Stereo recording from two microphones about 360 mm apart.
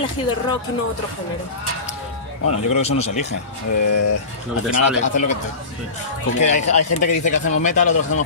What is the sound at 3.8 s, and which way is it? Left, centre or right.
Speech, left.